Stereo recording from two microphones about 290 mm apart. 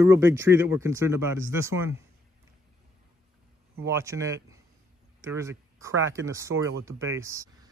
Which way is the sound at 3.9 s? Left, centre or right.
Centre.